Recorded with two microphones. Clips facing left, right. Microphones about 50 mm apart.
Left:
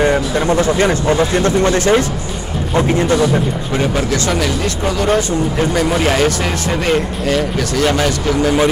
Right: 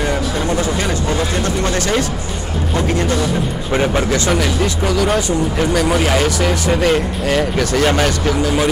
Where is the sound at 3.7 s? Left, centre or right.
Right.